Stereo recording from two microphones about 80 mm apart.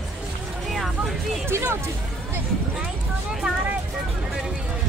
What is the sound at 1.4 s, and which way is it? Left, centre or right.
Speech, right.